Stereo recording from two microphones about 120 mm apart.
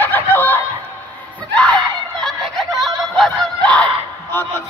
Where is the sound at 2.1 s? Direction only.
5° left (ahead or behind).